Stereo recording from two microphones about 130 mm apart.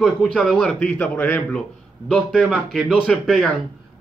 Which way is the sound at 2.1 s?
Centre (ahead or behind).